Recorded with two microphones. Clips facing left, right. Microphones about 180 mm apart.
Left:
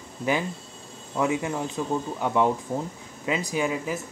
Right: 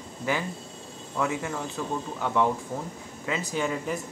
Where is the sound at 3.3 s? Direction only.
15° left (ahead or behind).